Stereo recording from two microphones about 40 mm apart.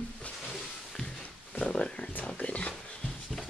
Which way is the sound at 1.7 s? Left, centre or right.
Left.